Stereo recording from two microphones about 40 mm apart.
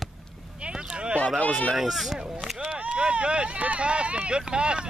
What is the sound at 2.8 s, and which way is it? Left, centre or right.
Speech, right.